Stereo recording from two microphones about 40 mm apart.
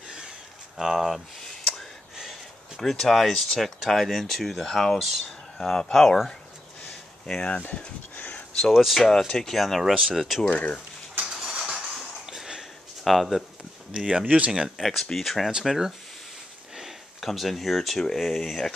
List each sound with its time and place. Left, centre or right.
0.7 s speech: centre
2.8 s speech: centre
7.2 s speech: left
8.2 s a sound: left
8.5 s speech: centre
11.2 s a sound: centre
13.0 s speech: centre
13.9 s speech: centre
14.2 s speech: right
14.8 s speech: centre
17.2 s speech: centre